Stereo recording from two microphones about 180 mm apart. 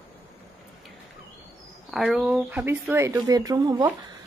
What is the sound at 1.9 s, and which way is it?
Speech, centre (ahead or behind).